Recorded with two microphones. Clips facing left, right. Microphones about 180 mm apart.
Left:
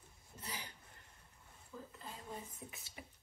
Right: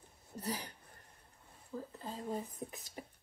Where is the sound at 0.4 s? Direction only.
40° right (ahead or behind).